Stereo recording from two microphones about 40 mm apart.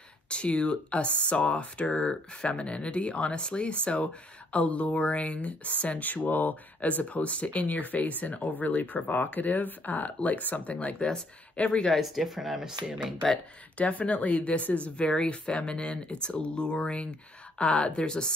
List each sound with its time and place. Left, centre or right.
0.3 s speech: left
12.0 s a woman's voice: centre
12.8 s speech: right
13.7 s speech: left